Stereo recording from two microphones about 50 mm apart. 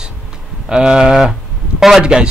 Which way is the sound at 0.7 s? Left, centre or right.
Centre.